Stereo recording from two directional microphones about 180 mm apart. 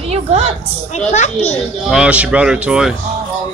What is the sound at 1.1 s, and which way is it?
Speech, 40° left (ahead or behind).